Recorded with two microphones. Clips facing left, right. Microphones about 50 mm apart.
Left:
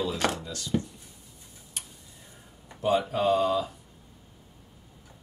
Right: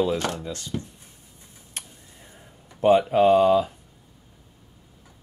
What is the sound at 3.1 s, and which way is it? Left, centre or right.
Speech, right.